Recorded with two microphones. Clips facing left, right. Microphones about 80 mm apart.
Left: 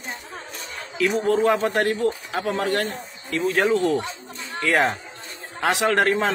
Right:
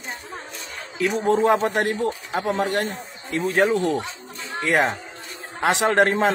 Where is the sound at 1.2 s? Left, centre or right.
Right.